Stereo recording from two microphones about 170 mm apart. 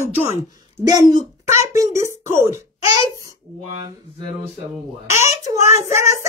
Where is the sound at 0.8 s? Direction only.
25° right (ahead or behind).